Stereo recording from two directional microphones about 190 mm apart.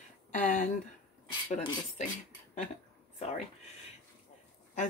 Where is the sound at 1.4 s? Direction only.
35° left (ahead or behind).